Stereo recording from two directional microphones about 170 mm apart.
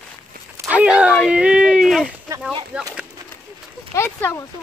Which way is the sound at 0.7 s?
5° right (ahead or behind).